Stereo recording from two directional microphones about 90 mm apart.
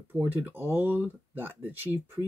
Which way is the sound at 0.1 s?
20° right (ahead or behind).